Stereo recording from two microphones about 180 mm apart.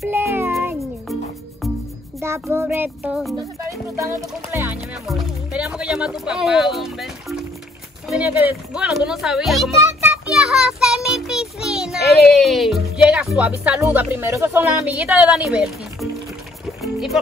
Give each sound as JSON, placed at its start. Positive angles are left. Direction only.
{"t": 0.1, "sound": "meow", "side_deg": -10}
{"t": 2.2, "sound": "speech", "side_deg": -15}
{"t": 4.0, "sound": "speech", "side_deg": -15}
{"t": 5.0, "sound": "speech", "side_deg": -5}
{"t": 9.8, "sound": "child singing", "side_deg": -10}
{"t": 12.3, "sound": "speech", "side_deg": 0}
{"t": 16.8, "sound": "music", "side_deg": 0}